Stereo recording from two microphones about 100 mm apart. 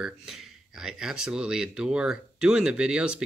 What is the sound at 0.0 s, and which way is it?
Speech, 5° right (ahead or behind).